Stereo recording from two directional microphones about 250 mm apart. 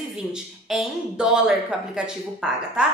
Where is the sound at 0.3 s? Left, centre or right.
Centre.